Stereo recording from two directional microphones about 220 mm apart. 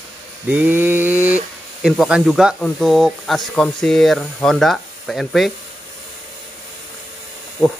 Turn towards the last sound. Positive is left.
turn(degrees=20)  # may be behind; listen again after turning